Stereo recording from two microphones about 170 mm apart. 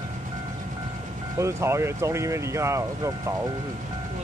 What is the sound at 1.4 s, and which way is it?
Speech, 15° right (ahead or behind).